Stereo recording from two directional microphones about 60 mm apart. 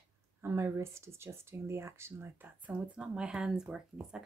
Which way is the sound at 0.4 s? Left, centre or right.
Right.